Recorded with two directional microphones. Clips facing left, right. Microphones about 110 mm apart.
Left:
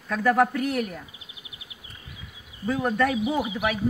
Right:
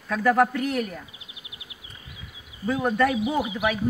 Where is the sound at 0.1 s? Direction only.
Centre (ahead or behind).